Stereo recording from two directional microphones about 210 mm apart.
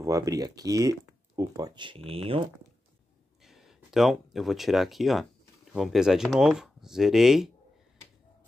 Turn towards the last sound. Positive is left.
turn(degrees=0)  # may be behind; listen again after turning